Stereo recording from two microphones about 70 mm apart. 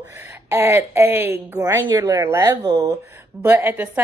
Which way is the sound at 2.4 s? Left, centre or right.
Right.